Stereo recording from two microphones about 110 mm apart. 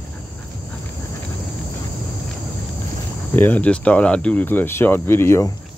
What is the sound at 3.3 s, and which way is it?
Speech, 15° left (ahead or behind).